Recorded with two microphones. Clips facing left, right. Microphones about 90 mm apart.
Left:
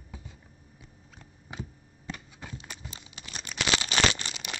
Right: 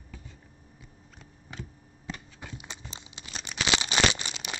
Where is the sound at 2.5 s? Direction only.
20° right (ahead or behind).